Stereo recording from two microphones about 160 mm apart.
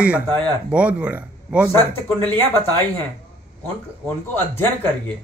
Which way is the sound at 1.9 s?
15° left (ahead or behind).